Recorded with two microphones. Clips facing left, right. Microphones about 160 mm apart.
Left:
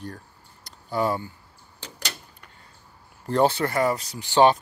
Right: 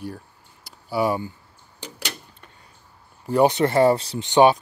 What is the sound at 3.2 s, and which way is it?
Speech, 15° right (ahead or behind).